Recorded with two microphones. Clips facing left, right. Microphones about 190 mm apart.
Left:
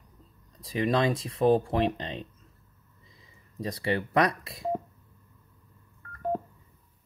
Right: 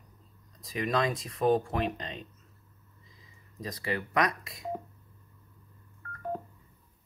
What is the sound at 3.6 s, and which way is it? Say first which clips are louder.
Speech: left 5 dB; 30° left (ahead or behind).